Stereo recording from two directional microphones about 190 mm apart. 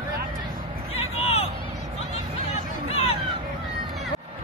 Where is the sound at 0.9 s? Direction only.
30° left (ahead or behind).